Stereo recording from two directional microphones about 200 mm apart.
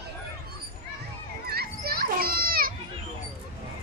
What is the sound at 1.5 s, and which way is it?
Children playing, 50° right (ahead or behind).